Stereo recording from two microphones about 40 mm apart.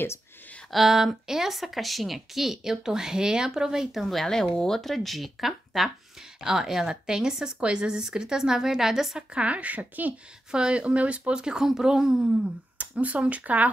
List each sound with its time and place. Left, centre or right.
0.7 s speech: centre
4.0 s speech: centre
4.3 s speech: centre
6.4 s speech: centre
9.3 s speech: right
10.5 s speech: right
11.4 s speech: centre
12.7 s speech: right